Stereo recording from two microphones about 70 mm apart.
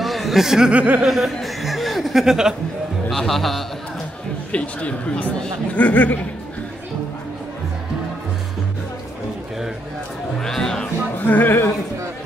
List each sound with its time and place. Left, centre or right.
0.0 s speech: centre; by 1.0 s right
1.0 s chuckle: centre
3.1 s speech: centre
4.5 s speech: centre
10.4 s music: centre
11.1 s a man's voice: left